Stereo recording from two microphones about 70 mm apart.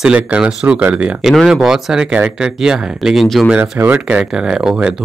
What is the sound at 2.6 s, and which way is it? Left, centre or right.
Speech, centre.